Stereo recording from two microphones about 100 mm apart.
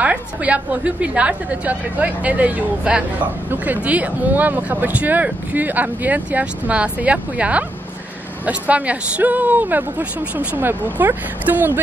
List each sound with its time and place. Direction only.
0.0 s speech: 15° right (ahead or behind)